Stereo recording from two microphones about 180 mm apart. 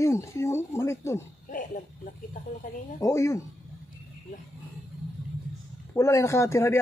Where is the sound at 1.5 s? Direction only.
50° left (ahead or behind).